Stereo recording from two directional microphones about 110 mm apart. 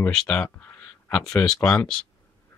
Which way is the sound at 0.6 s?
20° left (ahead or behind).